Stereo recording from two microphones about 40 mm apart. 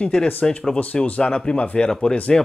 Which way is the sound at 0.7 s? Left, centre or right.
Left.